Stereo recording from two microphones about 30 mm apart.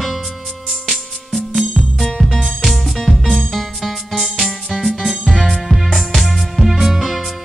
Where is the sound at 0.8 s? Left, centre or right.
Centre.